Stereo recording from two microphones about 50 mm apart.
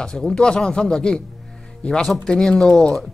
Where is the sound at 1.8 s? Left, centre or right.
Left.